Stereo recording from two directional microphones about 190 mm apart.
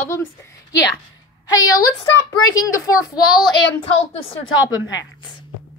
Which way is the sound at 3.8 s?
30° left (ahead or behind).